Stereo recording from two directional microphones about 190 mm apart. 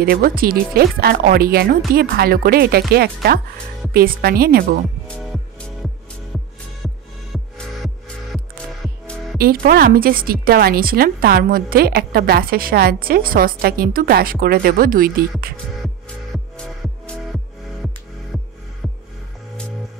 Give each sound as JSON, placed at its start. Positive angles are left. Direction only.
{"t": 0.0, "sound": "a woman's voice", "side_deg": -50}
{"t": 5.0, "sound": "music", "side_deg": 0}
{"t": 6.8, "sound": "music", "side_deg": 0}
{"t": 9.4, "sound": "a woman's voice", "side_deg": -50}
{"t": 16.5, "sound": "music", "side_deg": 5}